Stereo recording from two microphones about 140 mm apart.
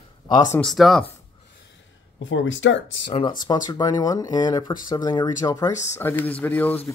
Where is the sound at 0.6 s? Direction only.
Centre (ahead or behind).